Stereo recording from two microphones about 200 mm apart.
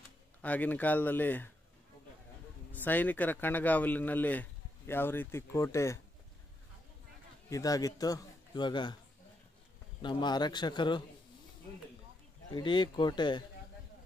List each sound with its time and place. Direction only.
0.4 s speech: 10° left (ahead or behind)
2.7 s speech: 10° left (ahead or behind)
7.4 s a man's voice: 15° left (ahead or behind)
10.0 s a man's voice: 20° left (ahead or behind)
12.4 s a man's voice: 25° left (ahead or behind)